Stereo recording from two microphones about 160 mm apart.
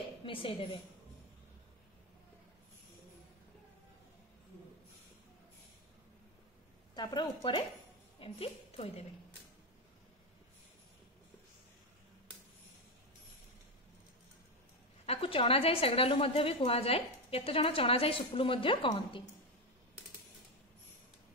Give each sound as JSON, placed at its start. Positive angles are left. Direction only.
{"t": 0.2, "sound": "a woman's voice", "side_deg": 35}
{"t": 7.0, "sound": "a woman's voice", "side_deg": 30}
{"t": 15.0, "sound": "a woman's voice", "side_deg": 35}